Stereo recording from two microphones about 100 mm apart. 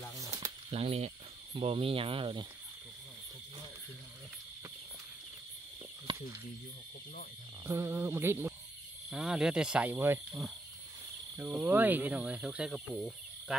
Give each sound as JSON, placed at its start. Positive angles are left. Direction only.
{"t": 0.2, "sound": "a sound", "side_deg": -35}
{"t": 0.7, "sound": "speech", "side_deg": -90}
{"t": 6.1, "sound": "snake", "side_deg": -55}
{"t": 7.6, "sound": "speech", "side_deg": -25}
{"t": 9.1, "sound": "speech", "side_deg": -5}
{"t": 9.9, "sound": "speech", "side_deg": -25}
{"t": 11.3, "sound": "speech", "side_deg": -20}